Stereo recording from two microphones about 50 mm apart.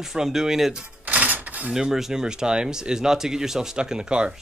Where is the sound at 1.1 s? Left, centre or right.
Right.